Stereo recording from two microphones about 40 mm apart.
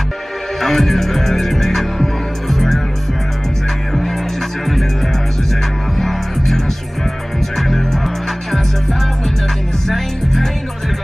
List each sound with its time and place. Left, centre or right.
0.6 s music: centre
5.9 s music: centre
9.8 s music: centre